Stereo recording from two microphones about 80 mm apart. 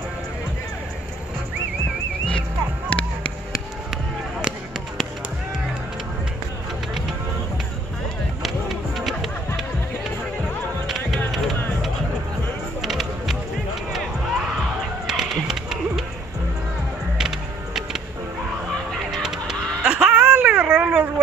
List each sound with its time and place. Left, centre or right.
2.9 s a sound: centre
4.4 s a sound: centre
8.4 s basketball bounce: centre
10.9 s music: centre
12.8 s music: centre
13.9 s basketball bounce: centre
17.2 s music: centre
18.9 s fowl: centre
20.3 s baby cry: centre